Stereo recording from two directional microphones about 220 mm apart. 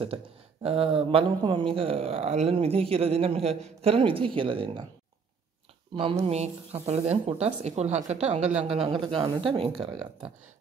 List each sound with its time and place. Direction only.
0.0 s speech: 25° right (ahead or behind)
5.9 s speech: 25° right (ahead or behind)